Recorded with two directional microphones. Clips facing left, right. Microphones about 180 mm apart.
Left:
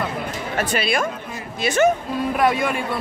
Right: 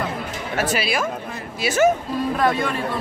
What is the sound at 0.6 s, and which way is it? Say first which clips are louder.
Speech: even; 5° right (ahead or behind).